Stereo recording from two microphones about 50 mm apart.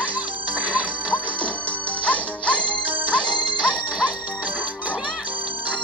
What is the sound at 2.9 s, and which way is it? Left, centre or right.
Music, right.